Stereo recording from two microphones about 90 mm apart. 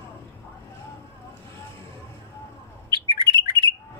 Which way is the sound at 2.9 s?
50° right (ahead or behind).